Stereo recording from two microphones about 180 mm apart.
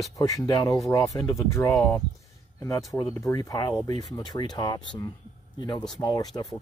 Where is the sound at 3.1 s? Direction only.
15° left (ahead or behind).